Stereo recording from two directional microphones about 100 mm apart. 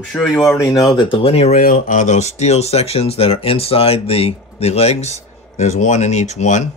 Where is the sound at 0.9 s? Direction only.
55° left (ahead or behind); by 5.3 s 90° left.